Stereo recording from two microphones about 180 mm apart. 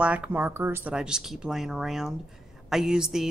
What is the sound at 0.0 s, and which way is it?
A woman's voice, 5° right (ahead or behind).